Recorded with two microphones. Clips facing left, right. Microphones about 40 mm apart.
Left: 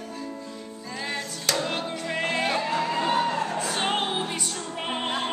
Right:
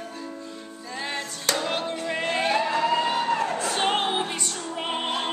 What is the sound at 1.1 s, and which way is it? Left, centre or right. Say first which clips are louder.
Music: even; centre.